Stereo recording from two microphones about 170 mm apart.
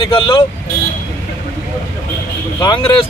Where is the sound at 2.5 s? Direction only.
25° left (ahead or behind).